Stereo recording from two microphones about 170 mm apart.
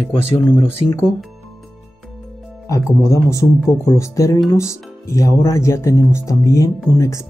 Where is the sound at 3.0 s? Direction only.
20° left (ahead or behind).